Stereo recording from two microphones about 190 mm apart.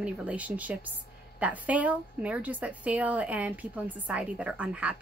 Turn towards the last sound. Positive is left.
turn(degrees=-5)  # may be behind; listen again after turning